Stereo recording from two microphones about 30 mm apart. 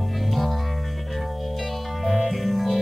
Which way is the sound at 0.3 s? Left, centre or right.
Centre.